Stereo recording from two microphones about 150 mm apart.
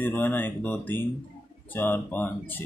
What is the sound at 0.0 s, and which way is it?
Speech, 10° left (ahead or behind).